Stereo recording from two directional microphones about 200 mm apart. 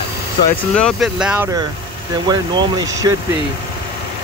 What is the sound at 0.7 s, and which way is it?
Speech, centre (ahead or behind).